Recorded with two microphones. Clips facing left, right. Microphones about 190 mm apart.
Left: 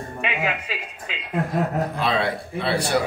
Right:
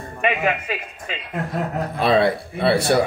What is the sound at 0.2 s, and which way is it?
Speech, 55° right (ahead or behind).